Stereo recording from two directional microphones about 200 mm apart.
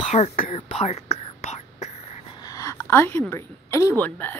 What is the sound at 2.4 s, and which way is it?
A woman's voice, 15° left (ahead or behind).